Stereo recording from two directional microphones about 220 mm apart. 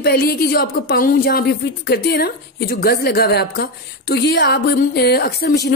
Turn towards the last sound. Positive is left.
turn(degrees=45)  # may be behind; listen again after turning